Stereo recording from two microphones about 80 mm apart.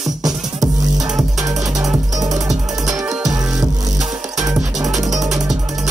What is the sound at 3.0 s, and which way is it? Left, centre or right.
Music, centre.